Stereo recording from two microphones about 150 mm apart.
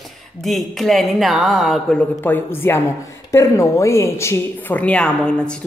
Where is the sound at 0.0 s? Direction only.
Centre (ahead or behind).